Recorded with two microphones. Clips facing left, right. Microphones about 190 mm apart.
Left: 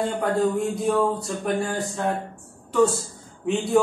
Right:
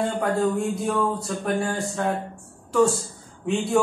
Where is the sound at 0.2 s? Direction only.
Centre (ahead or behind).